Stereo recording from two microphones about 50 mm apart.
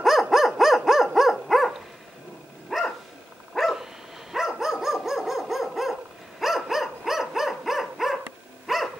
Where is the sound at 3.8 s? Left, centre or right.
Centre.